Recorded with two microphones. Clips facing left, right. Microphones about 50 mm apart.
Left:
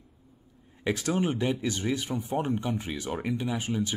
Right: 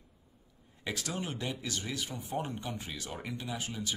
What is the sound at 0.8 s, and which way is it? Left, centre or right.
Speech, left.